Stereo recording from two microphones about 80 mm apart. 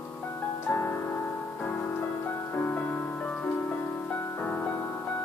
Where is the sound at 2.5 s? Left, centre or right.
Left.